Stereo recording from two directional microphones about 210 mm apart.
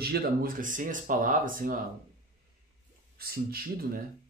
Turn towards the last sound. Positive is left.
turn(degrees=-45)  # may be behind; listen again after turning